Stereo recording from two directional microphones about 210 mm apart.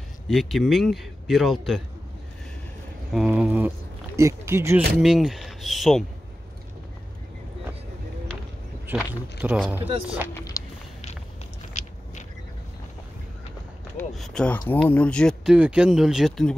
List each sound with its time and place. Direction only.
0.3 s speech: centre (ahead or behind)
3.1 s speech: 5° right (ahead or behind)
8.8 s speech: 5° right (ahead or behind)
10.3 s a sound: 15° left (ahead or behind)
11.7 s biting: 35° left (ahead or behind)
13.9 s speech: centre (ahead or behind)